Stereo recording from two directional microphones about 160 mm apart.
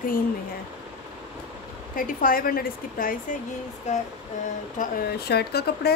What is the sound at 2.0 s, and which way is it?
Speech, 60° left (ahead or behind).